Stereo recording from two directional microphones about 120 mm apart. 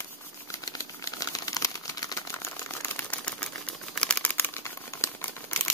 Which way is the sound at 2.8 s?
15° left (ahead or behind).